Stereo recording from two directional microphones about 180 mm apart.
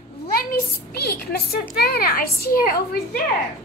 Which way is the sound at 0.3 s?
55° left (ahead or behind).